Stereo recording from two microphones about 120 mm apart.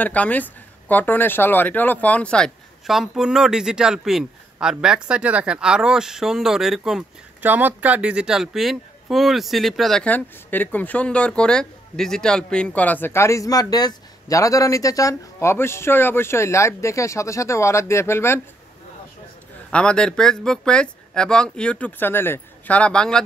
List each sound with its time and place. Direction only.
0.0 s speech: 10° left (ahead or behind); by 7.1 s 5° right (ahead or behind)
7.4 s speech: 15° right (ahead or behind); by 18.4 s 20° left (ahead or behind)
19.7 s speech: 10° left (ahead or behind)